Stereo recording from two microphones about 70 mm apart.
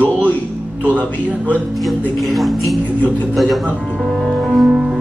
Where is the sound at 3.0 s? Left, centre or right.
Right.